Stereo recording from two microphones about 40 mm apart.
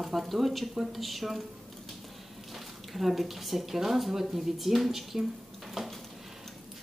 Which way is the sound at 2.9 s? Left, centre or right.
Centre.